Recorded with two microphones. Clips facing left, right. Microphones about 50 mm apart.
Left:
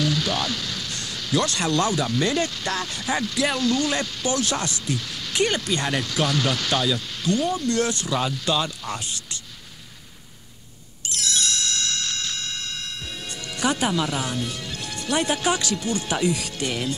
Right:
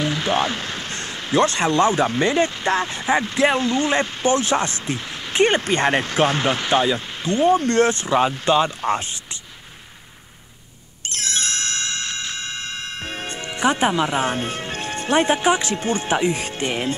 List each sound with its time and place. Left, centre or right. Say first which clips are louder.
0.0 s speech: right 4 dB; right
11.1 s music: right 1 dB; right